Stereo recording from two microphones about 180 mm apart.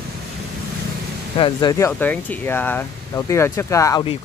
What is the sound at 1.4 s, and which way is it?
Speech, 20° left (ahead or behind).